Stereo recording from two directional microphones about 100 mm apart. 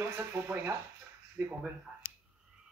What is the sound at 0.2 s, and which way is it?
Speech, 20° right (ahead or behind).